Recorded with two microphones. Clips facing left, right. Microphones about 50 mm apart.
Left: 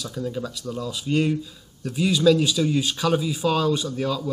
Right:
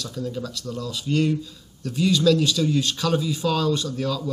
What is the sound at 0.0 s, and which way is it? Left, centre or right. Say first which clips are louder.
Speech: left 1 dB; centre.